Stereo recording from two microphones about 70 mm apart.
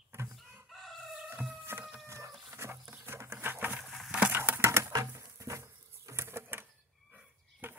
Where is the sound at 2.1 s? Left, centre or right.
Right.